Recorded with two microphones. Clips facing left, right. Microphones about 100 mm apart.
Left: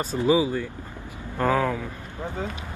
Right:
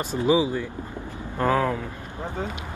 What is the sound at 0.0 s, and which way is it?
Speech, 20° right (ahead or behind).